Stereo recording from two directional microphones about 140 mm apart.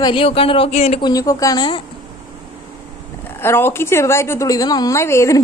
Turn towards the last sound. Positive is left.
turn(degrees=20)  # may be behind; listen again after turning